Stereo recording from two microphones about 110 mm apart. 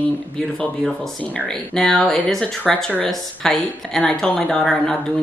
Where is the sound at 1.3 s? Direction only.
5° left (ahead or behind).